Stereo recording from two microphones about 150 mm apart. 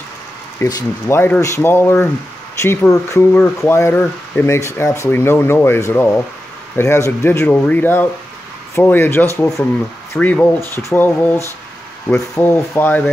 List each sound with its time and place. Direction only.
0.6 s speech: 20° left (ahead or behind)